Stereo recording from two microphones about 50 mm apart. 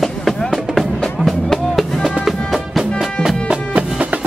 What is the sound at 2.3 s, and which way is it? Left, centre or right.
Music, centre.